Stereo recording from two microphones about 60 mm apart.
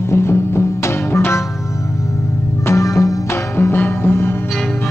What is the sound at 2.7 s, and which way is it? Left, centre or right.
Music, left.